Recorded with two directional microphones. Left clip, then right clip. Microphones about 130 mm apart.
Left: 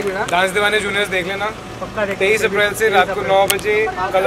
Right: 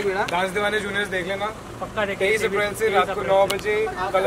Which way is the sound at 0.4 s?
5° left (ahead or behind).